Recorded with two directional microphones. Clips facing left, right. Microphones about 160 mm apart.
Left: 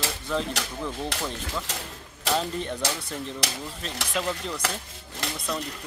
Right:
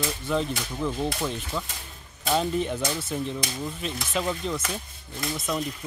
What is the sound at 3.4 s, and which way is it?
Speech, 75° left (ahead or behind).